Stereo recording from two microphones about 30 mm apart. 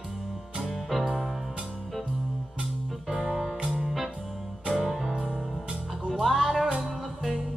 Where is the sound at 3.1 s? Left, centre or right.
Right.